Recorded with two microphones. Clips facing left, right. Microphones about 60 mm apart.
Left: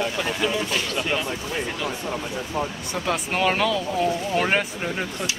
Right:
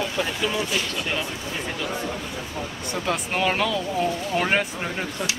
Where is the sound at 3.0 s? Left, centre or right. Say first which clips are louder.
Left 1 dB; centre.